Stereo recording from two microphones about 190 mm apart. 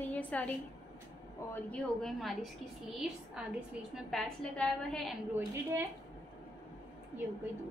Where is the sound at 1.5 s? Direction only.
5° left (ahead or behind).